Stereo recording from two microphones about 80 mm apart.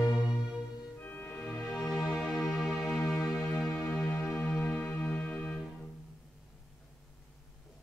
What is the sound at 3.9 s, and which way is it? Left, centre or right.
Music, left.